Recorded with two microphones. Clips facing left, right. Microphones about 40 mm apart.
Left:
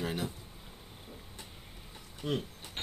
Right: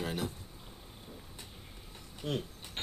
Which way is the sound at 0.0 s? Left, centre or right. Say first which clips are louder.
Left 1 dB; centre.